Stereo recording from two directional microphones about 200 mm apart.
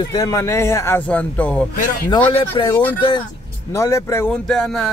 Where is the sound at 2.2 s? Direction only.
25° left (ahead or behind).